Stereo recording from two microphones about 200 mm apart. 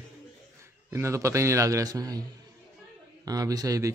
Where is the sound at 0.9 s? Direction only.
15° right (ahead or behind).